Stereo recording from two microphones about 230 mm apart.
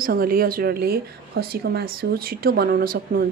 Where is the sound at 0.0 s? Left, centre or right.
Right.